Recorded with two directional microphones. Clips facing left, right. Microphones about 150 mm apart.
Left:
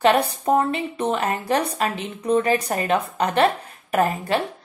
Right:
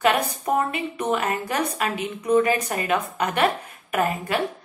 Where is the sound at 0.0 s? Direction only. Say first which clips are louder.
Left 3 dB; 30° left (ahead or behind).